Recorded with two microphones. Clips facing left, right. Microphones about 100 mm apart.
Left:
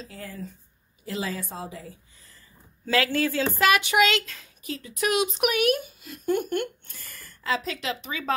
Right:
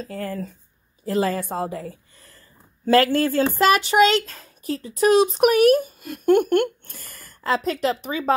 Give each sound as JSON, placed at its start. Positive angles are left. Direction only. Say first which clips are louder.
{"t": 0.0, "sound": "a woman's voice", "louder": "right 9 dB", "side_deg": -55}
{"t": 2.8, "sound": "speech", "louder": "right 7 dB", "side_deg": -45}
{"t": 6.0, "sound": "speech", "louder": "right 8 dB", "side_deg": -60}